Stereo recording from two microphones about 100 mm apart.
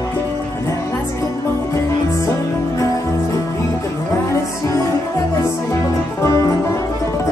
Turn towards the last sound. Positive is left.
turn(degrees=30)  # may be behind; listen again after turning